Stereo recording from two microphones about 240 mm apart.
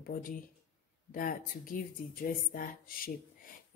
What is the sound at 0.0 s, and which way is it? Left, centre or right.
A woman's voice, left.